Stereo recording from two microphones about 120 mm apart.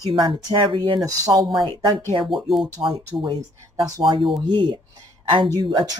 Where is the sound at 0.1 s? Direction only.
45° right (ahead or behind).